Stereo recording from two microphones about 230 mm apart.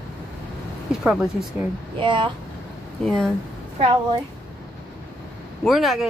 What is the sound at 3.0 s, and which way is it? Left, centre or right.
Speech, centre.